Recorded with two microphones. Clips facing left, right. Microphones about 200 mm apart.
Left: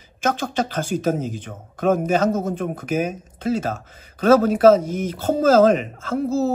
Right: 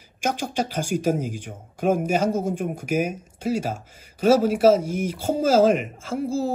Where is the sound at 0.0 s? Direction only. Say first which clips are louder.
Left 3 dB; 10° right (ahead or behind).